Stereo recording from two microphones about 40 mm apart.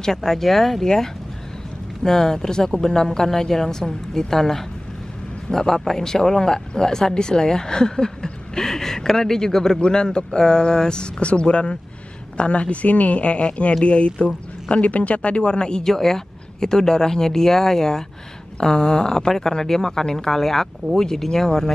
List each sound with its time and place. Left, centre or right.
0.0 s speech: centre